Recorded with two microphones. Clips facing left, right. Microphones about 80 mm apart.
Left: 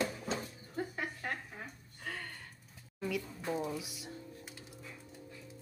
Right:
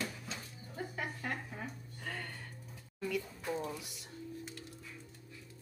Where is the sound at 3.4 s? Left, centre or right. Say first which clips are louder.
Left 5 dB; centre.